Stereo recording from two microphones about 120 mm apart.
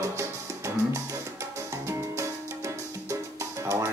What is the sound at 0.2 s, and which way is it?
Music, 25° right (ahead or behind).